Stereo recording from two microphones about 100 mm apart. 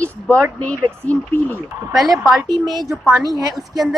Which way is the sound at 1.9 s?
Centre (ahead or behind).